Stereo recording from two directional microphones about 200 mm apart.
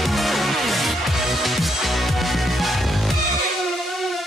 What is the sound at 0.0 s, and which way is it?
Music, centre (ahead or behind).